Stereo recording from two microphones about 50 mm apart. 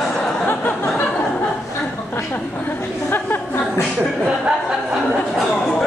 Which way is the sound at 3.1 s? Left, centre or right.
Left.